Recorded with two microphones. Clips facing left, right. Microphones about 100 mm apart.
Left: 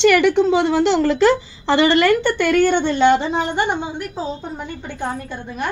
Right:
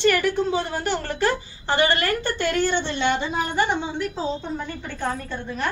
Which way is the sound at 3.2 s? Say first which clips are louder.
Left 3 dB; 25° left (ahead or behind).